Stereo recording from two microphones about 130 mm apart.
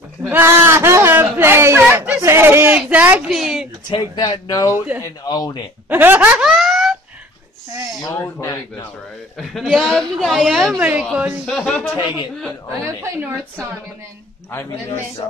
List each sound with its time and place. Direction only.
0.3 s a sound: 15° right (ahead or behind)
3.3 s a woman's voice: centre (ahead or behind)
3.9 s speech: 35° left (ahead or behind)
5.9 s a woman's voice: 15° right (ahead or behind)
8.2 s speech: 20° left (ahead or behind)
9.4 s a woman's voice: centre (ahead or behind)
10.8 s a woman's voice: 10° right (ahead or behind)
11.4 s a woman's voice: 5° left (ahead or behind)
12.8 s a woman's voice: 15° right (ahead or behind)